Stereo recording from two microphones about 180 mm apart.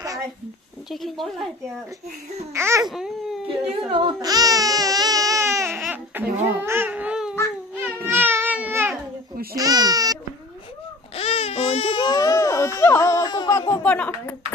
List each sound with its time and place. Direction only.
0.8 s speech: centre (ahead or behind)
2.5 s babbling: 15° right (ahead or behind)
3.9 s baby cry: 25° right (ahead or behind)
5.8 s babbling: 10° right (ahead or behind)
7.8 s baby cry: 10° right (ahead or behind)
9.6 s babbling: 20° right (ahead or behind)
11.1 s baby cry: 35° left (ahead or behind); by 14.3 s 10° left (ahead or behind)